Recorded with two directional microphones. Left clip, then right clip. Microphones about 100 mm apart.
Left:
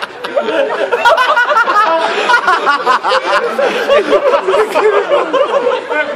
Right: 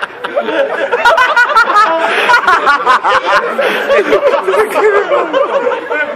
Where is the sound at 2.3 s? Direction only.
20° right (ahead or behind).